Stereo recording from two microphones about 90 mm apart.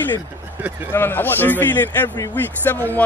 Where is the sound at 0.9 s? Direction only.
25° left (ahead or behind).